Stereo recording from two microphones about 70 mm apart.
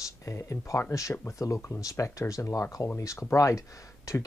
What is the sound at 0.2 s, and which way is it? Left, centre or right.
Speech, left.